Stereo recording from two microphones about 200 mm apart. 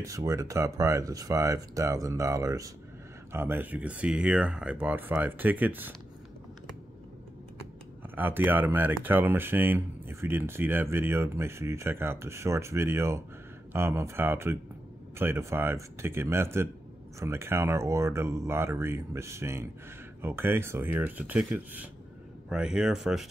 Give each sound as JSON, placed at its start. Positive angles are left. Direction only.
{"t": 0.0, "sound": "speech", "side_deg": -15}
{"t": 8.2, "sound": "speech", "side_deg": -10}